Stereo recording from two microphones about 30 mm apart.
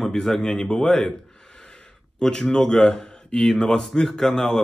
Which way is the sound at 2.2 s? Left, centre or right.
Left.